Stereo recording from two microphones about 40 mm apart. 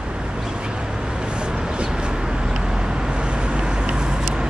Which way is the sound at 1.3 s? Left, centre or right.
Right.